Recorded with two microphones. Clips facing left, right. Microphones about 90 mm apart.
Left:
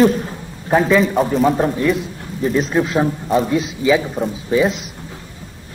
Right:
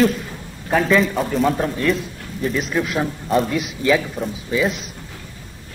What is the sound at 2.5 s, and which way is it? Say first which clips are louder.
Speech: left 5 dB; 35° left (ahead or behind).